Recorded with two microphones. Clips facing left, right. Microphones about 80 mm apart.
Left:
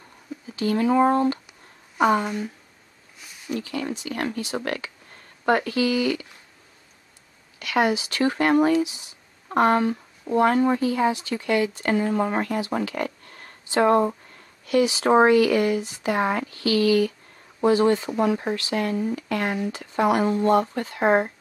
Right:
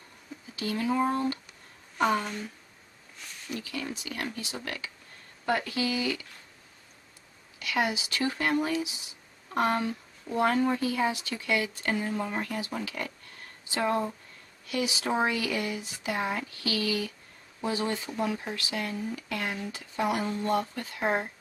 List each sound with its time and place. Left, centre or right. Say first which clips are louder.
0.6 s speech: left 8 dB; left
2.2 s speech: left 8 dB; centre
3.2 s a sound: left 6 dB; centre
3.5 s speech: left 7 dB; left
7.5 s speech: left 7 dB; left
12.0 s speech: left 8 dB; left
20.2 s speech: left 9 dB; left